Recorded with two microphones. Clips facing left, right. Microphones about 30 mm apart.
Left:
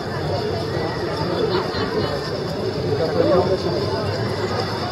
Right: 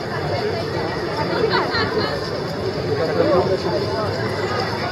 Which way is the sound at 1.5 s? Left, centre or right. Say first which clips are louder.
Right 3 dB; right.